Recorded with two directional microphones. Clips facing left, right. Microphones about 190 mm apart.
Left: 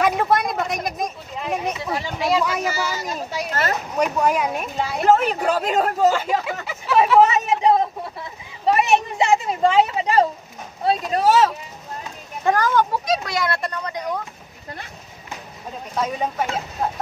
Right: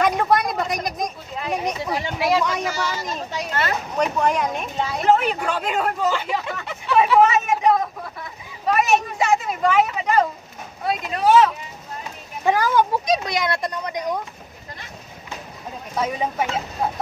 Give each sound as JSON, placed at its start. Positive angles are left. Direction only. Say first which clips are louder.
{"t": 0.0, "sound": "a sound", "louder": "even", "side_deg": 5}
{"t": 2.0, "sound": "speech", "louder": "right 1 dB", "side_deg": -5}
{"t": 2.4, "sound": "speech", "louder": "left 1 dB", "side_deg": 5}
{"t": 5.0, "sound": "speech", "louder": "left 2 dB", "side_deg": 40}
{"t": 6.6, "sound": "hubbub", "louder": "left 1 dB", "side_deg": 5}
{"t": 7.2, "sound": "a sound", "louder": "left 1 dB", "side_deg": 35}
{"t": 8.7, "sound": "speech", "louder": "even", "side_deg": 25}
{"t": 12.4, "sound": "speech", "louder": "even", "side_deg": -10}
{"t": 16.8, "sound": "speech", "louder": "even", "side_deg": -10}